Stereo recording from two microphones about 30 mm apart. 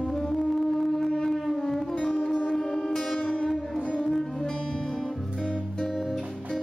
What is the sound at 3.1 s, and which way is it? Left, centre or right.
Music, left.